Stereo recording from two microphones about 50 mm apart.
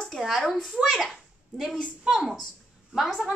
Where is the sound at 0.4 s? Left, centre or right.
Centre.